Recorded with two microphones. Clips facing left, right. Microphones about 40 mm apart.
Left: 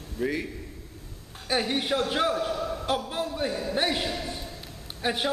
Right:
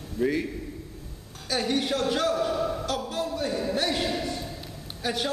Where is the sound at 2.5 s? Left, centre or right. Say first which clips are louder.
Right 1 dB; centre.